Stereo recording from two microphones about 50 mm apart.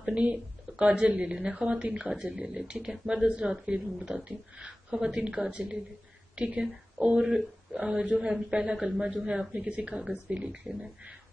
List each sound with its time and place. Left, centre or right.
0.0 s speech: right
7.8 s speech: right